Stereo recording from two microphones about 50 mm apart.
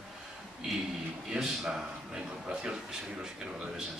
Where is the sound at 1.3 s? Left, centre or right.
Centre.